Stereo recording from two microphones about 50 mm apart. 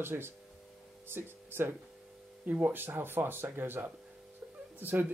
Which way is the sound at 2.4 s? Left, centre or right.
Right.